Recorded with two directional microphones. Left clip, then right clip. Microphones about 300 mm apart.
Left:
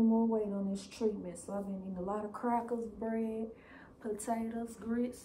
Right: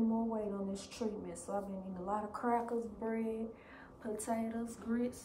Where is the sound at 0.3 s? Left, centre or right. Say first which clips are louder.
Left 4 dB; centre.